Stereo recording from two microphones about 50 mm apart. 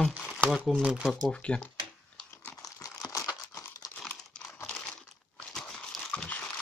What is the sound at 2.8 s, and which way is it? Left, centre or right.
Crumpling, left.